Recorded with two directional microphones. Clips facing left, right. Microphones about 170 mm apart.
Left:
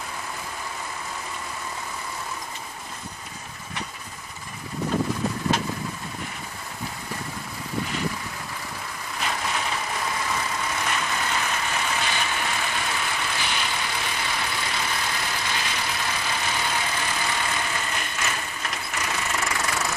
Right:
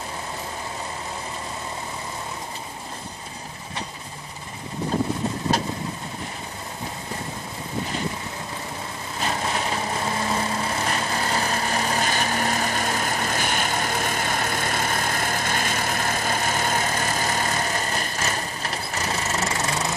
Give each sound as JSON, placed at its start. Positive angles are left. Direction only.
{"t": 9.2, "sound": "vehicle", "side_deg": -35}
{"t": 19.5, "sound": "engine knocking", "side_deg": -25}